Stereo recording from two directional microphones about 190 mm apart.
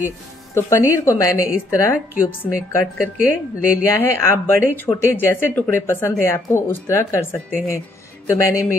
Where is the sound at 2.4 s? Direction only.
15° left (ahead or behind).